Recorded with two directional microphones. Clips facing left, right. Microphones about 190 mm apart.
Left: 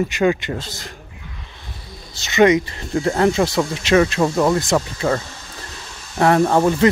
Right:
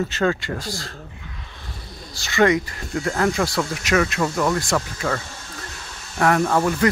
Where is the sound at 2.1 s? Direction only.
20° left (ahead or behind).